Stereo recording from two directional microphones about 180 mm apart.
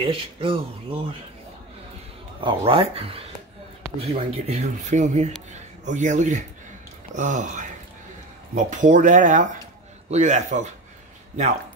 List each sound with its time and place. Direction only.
0.0 s speech: 30° right (ahead or behind)
2.4 s speech: 30° right (ahead or behind)
8.6 s speech: 45° right (ahead or behind)